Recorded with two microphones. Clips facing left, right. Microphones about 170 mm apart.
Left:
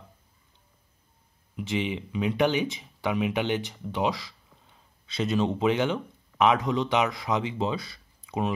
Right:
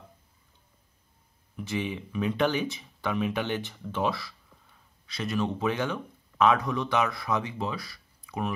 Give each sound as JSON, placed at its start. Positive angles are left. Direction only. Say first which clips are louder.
{"t": 1.6, "sound": "speech", "louder": "left 3 dB", "side_deg": 20}